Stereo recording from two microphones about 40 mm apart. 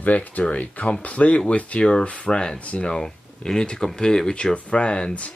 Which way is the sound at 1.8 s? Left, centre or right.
Centre.